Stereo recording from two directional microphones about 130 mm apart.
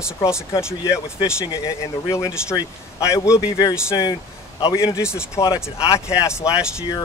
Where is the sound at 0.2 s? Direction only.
25° left (ahead or behind).